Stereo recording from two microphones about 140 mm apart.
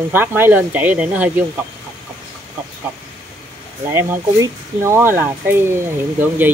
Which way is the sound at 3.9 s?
15° right (ahead or behind).